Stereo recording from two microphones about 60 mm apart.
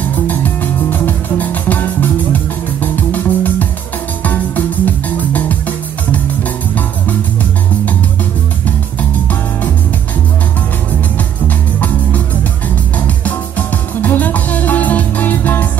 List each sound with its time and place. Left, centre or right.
0.1 s music: left
11.1 s music: left